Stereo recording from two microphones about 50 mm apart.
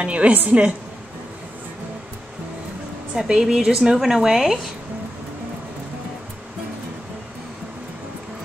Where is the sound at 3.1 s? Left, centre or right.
Centre.